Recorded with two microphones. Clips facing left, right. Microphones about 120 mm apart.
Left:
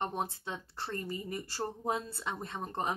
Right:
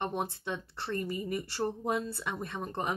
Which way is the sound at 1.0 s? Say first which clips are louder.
Right 4 dB; 25° left (ahead or behind).